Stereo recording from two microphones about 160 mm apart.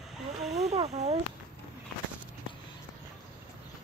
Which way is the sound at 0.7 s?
40° right (ahead or behind).